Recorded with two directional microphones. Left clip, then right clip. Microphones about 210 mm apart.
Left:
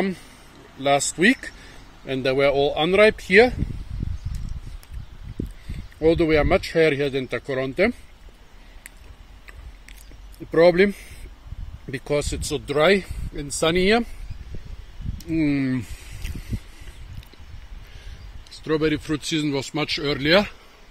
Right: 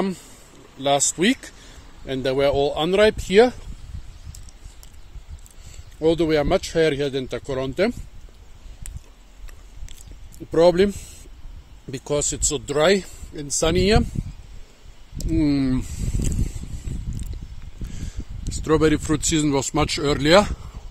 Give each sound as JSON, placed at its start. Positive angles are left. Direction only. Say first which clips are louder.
{"t": 0.0, "sound": "speech", "louder": "even", "side_deg": -20}
{"t": 5.9, "sound": "speech", "louder": "left 1 dB", "side_deg": -10}
{"t": 10.5, "sound": "speech", "louder": "even", "side_deg": -10}
{"t": 15.1, "sound": "speech", "louder": "right 1 dB", "side_deg": -20}
{"t": 18.5, "sound": "speech", "louder": "right 4 dB", "side_deg": -40}